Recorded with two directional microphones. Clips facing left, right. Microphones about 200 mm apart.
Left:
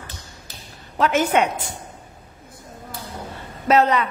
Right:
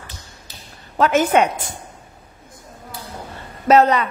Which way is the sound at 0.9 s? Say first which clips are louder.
Right 3 dB; 40° right (ahead or behind).